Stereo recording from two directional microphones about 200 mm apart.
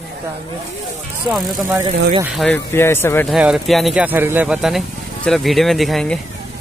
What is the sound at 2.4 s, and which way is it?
Speech, 10° left (ahead or behind).